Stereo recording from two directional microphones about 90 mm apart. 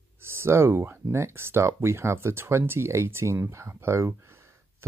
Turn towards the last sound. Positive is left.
turn(degrees=-30)  # may be behind; listen again after turning